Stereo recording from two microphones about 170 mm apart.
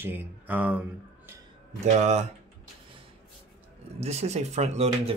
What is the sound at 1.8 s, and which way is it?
Speech, 40° right (ahead or behind).